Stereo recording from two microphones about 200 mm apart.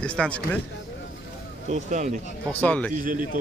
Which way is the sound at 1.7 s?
35° right (ahead or behind).